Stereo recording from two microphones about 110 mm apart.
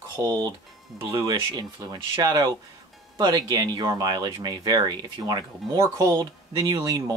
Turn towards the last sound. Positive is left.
turn(degrees=-35)  # may be behind; listen again after turning